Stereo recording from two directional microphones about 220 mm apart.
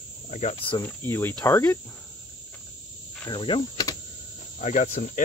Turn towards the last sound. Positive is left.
turn(degrees=30)  # may be behind; listen again after turning